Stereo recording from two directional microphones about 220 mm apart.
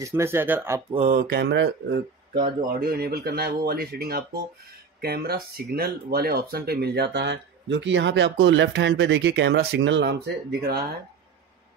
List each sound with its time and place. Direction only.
0.0 s speech: 10° right (ahead or behind)
0.9 s speech: 35° right (ahead or behind)